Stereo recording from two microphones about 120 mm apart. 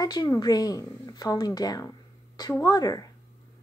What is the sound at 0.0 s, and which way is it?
Speech, 35° left (ahead or behind).